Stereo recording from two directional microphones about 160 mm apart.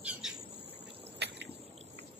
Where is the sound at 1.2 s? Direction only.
90° right.